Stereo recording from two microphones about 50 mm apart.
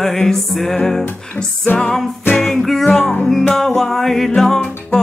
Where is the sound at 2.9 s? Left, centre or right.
Centre.